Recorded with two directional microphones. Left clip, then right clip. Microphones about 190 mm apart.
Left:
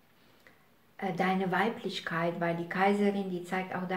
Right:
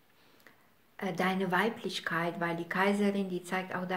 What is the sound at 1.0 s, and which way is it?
Speech, 40° right (ahead or behind).